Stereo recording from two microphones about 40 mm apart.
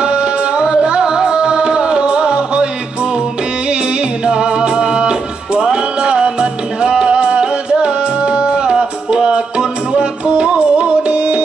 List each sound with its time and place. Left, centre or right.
0.0 s music: right
4.2 s music: right